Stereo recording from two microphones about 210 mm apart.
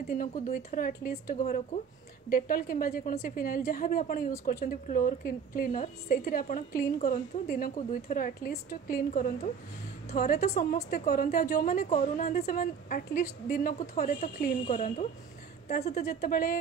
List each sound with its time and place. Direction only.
0.1 s a woman's voice: 40° left (ahead or behind)